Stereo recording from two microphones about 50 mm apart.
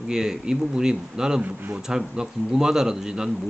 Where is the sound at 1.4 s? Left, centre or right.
Right.